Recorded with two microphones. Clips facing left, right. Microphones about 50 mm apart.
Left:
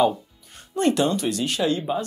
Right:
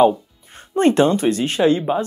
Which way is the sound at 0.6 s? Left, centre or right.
Right.